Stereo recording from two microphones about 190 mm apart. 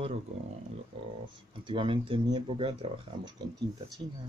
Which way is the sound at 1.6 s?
25° right (ahead or behind).